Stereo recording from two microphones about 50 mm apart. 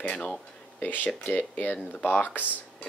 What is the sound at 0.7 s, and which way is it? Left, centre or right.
Speech, left.